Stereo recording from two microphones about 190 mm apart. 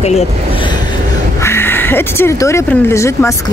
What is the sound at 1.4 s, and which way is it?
Speech, 10° left (ahead or behind).